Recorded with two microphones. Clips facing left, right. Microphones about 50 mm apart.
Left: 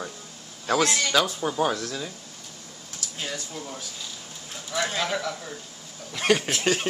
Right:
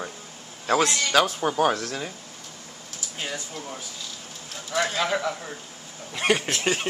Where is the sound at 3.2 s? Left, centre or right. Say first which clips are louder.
Right 1 dB; centre.